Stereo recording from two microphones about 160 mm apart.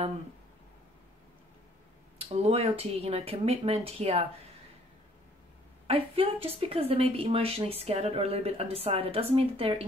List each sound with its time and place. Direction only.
2.1 s speech: 40° right (ahead or behind)
5.9 s speech: 35° right (ahead or behind)